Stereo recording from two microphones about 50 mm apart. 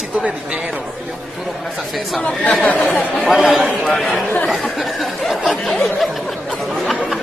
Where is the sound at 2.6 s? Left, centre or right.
Left.